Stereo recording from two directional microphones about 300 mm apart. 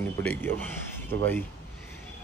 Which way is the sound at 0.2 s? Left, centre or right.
Centre.